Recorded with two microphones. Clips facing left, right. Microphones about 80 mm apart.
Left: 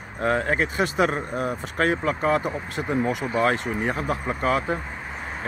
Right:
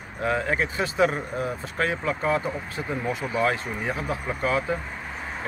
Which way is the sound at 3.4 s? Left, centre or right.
Left.